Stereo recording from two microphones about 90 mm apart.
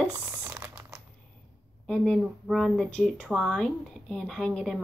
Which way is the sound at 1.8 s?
10° left (ahead or behind).